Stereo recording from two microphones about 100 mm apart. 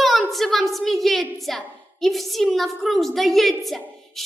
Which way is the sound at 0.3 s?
Centre (ahead or behind).